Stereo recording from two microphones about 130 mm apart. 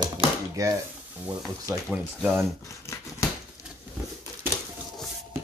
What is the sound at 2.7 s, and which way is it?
Scissors, 25° left (ahead or behind).